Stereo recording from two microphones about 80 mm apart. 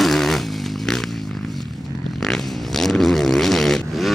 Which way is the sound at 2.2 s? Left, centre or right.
Centre.